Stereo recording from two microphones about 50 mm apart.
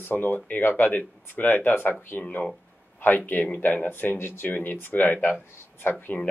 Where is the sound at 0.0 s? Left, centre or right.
Left.